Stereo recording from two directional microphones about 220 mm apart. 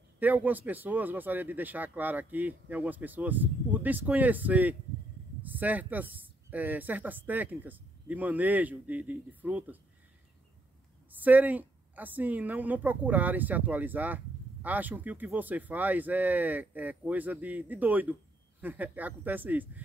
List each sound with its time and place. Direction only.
0.2 s a woman's voice: 5° right (ahead or behind)
11.1 s a woman's voice: 10° right (ahead or behind)